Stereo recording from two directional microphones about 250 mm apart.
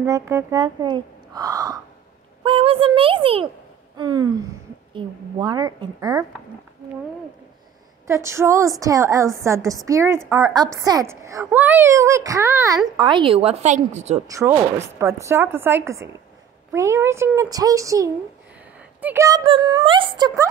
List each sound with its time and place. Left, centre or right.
0.0 s speech: centre
3.9 s gasp: centre
4.9 s a woman's voice: centre
8.1 s a woman's voice: centre; by 14.2 s right
14.2 s a woman's voice: centre